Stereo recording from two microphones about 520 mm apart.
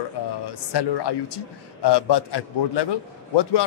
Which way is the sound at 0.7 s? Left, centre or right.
Left.